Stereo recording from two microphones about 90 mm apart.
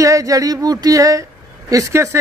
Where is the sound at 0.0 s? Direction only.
40° right (ahead or behind).